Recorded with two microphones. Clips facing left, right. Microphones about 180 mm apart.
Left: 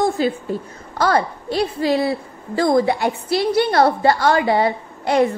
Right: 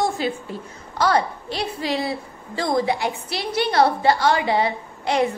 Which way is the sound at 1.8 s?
45° left (ahead or behind).